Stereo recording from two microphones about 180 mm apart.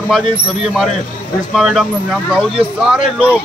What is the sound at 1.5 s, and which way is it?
Speech, centre (ahead or behind).